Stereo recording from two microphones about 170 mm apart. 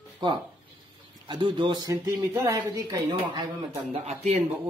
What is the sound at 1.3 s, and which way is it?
Speech, 25° right (ahead or behind).